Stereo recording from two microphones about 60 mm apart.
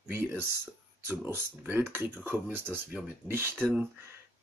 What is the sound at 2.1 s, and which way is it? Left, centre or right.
Speech, right.